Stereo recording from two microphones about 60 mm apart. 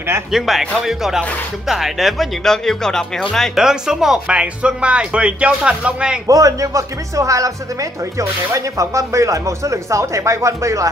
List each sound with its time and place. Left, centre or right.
0.3 s speech: centre
2.4 s speech: centre
3.5 s speech: centre
6.2 s speech: right